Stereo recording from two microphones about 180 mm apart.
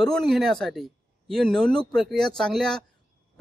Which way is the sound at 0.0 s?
Centre (ahead or behind).